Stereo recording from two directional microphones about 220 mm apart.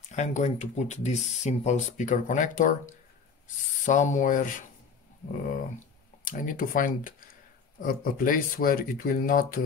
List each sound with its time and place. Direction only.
0.1 s speech: 30° left (ahead or behind)
6.2 s speech: 35° left (ahead or behind)